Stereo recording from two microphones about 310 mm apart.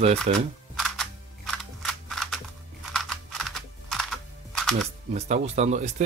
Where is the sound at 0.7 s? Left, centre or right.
Centre.